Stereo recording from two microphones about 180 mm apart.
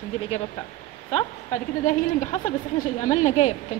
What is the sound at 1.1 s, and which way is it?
A woman's voice, 40° left (ahead or behind).